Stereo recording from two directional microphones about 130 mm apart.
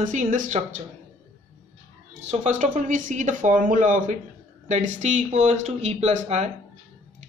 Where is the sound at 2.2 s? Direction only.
60° right (ahead or behind); by 4.1 s 90° right.